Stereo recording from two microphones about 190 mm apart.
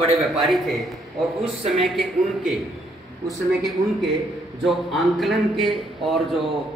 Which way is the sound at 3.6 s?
Centre (ahead or behind).